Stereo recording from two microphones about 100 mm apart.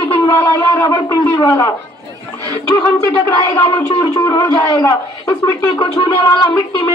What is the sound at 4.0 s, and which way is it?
Speech, 35° left (ahead or behind).